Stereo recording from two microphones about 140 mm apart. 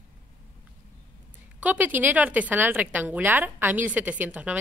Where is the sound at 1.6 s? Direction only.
10° right (ahead or behind).